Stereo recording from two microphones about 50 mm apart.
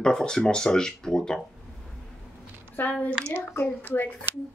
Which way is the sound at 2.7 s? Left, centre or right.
Left.